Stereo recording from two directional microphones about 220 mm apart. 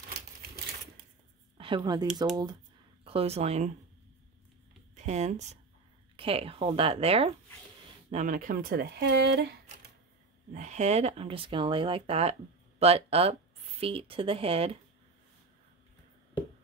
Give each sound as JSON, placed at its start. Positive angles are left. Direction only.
{"t": 1.6, "sound": "speech", "side_deg": -20}
{"t": 4.9, "sound": "speech", "side_deg": -30}
{"t": 10.5, "sound": "speech", "side_deg": -30}